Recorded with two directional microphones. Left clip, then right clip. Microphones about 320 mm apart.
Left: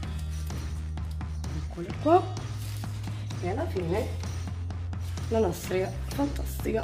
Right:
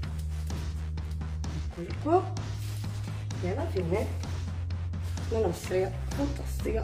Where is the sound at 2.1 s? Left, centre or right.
Left.